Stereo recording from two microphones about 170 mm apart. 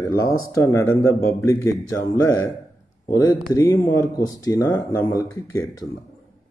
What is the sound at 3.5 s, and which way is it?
Speech, 15° right (ahead or behind).